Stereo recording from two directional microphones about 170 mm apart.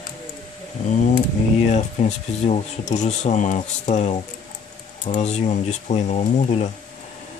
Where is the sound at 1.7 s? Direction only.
40° left (ahead or behind).